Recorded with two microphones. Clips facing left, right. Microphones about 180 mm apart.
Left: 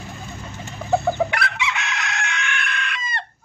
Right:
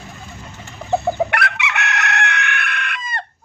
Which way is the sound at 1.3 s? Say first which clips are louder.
Right 2 dB; 65° right (ahead or behind).